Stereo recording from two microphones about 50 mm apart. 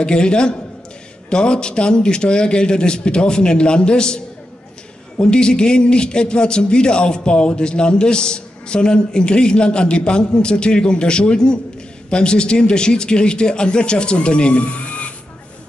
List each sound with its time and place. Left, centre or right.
0.0 s a man's voice: centre